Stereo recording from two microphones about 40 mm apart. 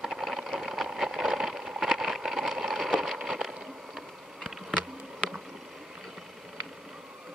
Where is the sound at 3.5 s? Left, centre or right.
Centre.